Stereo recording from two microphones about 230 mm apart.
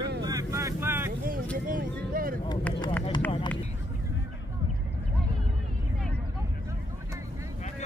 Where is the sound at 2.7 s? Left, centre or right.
Centre.